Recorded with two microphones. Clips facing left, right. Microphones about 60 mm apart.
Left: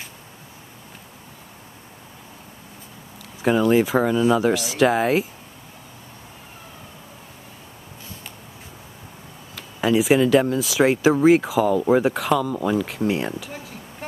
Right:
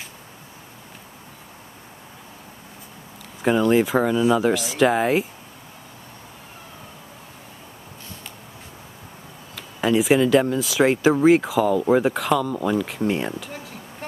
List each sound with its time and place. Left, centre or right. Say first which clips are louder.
3.4 s speech: even; centre
9.6 s speech: even; centre